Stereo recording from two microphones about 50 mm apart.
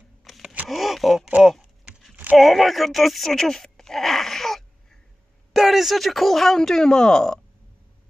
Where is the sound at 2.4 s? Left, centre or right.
Centre.